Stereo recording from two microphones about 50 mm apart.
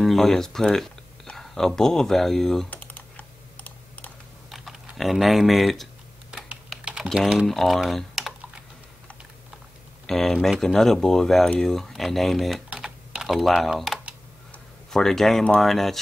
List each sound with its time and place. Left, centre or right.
0.0 s speech: centre
2.7 s computer keyboard: left
4.5 s speech: centre
6.8 s typing: centre
7.2 s speech: centre
7.9 s typing: centre
10.0 s speech: centre
12.7 s typing: centre
14.9 s speech: centre